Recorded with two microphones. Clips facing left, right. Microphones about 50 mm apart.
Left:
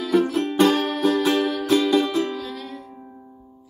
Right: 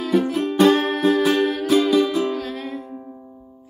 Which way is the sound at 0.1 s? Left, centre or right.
Centre.